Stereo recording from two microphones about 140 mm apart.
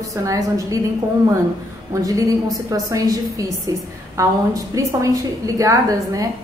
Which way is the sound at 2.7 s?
25° right (ahead or behind).